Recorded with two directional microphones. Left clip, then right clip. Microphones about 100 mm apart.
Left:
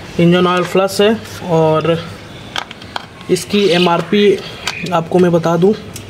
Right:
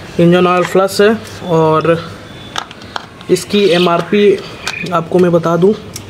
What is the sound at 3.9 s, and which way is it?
Speech, 15° left (ahead or behind).